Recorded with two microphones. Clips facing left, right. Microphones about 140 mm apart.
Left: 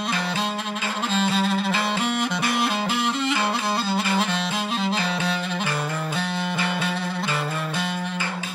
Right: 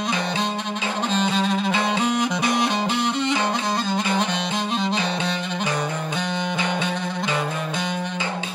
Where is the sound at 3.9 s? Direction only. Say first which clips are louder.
Even; 5° left (ahead or behind).